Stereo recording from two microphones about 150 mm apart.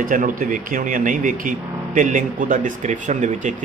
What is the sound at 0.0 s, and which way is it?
Speech, 65° right (ahead or behind).